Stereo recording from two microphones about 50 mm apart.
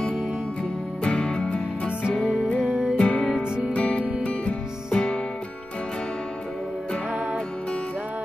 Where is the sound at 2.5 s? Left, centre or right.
Centre.